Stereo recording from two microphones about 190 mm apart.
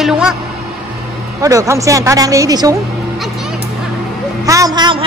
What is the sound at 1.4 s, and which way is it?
A woman's voice, 15° right (ahead or behind).